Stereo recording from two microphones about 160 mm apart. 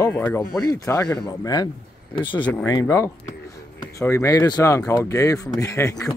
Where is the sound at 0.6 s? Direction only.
20° left (ahead or behind).